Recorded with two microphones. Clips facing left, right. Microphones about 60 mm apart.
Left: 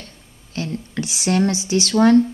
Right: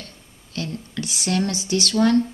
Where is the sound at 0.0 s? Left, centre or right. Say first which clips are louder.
Even; left.